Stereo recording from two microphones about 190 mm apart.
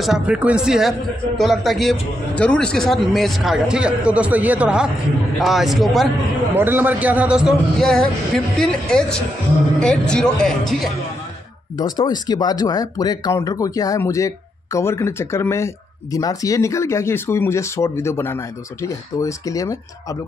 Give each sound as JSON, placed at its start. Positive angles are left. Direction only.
{"t": 0.0, "sound": "a man's voice", "side_deg": -5}
{"t": 11.7, "sound": "speech", "side_deg": 25}